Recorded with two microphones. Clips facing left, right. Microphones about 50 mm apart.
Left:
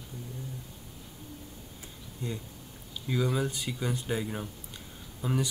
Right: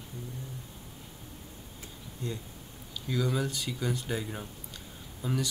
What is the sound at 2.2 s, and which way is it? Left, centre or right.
Speech, centre.